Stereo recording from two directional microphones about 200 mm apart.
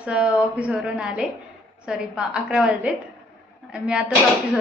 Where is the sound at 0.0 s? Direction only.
5° right (ahead or behind).